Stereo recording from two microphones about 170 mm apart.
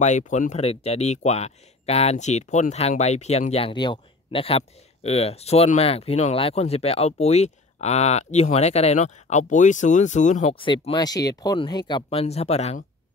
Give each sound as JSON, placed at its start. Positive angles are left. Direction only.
{"t": 0.0, "sound": "speech", "side_deg": 45}
{"t": 10.5, "sound": "speech", "side_deg": 30}